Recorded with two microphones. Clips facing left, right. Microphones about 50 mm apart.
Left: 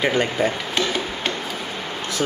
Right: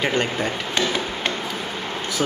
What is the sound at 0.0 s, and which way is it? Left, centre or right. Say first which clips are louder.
Speech: left 2 dB; centre.